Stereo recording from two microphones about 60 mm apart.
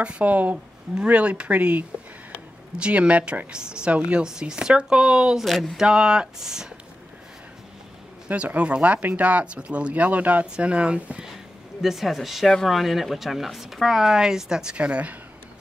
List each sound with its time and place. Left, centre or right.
0.0 s speech: right
5.4 s speech: centre
5.8 s speech: centre
8.3 s speech: right
11.8 s speech: centre